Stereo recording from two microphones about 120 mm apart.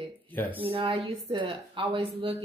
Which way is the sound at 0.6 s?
50° right (ahead or behind).